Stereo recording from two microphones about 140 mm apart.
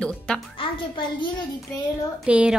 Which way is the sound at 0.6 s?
35° left (ahead or behind).